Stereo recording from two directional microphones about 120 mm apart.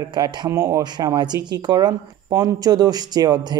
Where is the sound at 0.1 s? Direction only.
35° right (ahead or behind).